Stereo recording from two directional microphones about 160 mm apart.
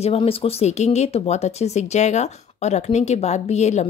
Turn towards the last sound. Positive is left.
turn(degrees=45)  # may be behind; listen again after turning